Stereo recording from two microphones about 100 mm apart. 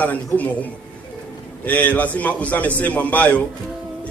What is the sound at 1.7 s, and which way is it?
A man's voice, 15° left (ahead or behind).